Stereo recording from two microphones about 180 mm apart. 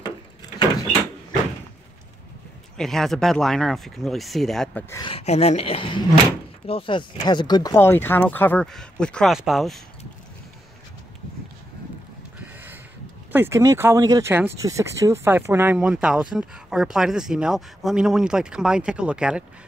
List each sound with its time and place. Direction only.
2.8 s speech: centre (ahead or behind)
5.0 s speech: 35° left (ahead or behind); by 9.8 s centre (ahead or behind)
13.3 s speech: 15° right (ahead or behind)